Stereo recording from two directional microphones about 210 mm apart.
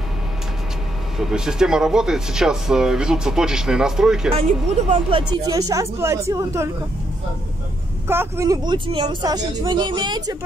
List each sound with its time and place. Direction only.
1.1 s speech: 5° right (ahead or behind)
4.3 s a woman's voice: 30° right (ahead or behind); by 6.7 s 15° right (ahead or behind)
8.1 s speech: 15° right (ahead or behind)